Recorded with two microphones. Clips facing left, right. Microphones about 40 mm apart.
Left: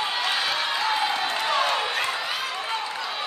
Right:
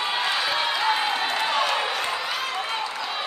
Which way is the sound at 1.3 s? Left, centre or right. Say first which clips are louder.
Even; centre.